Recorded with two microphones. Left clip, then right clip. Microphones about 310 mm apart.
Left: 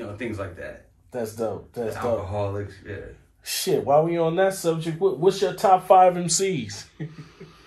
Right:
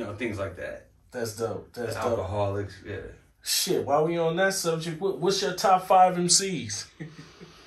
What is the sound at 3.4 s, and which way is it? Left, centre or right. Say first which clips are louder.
Speech: left 3 dB; left.